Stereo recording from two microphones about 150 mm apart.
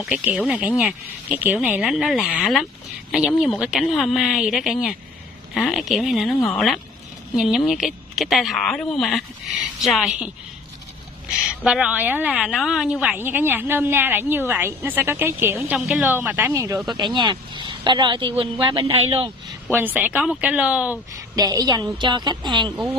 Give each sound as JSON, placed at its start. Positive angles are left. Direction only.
{"t": 0.0, "sound": "a woman's voice", "side_deg": -10}
{"t": 1.8, "sound": "a woman's voice", "side_deg": 0}
{"t": 19.7, "sound": "a woman's voice", "side_deg": -10}
{"t": 21.4, "sound": "a woman's voice", "side_deg": -25}